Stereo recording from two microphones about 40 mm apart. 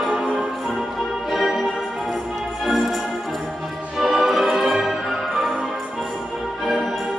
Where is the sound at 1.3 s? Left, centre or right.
Centre.